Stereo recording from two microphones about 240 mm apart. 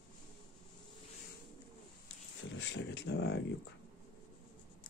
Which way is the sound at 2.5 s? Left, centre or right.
Left.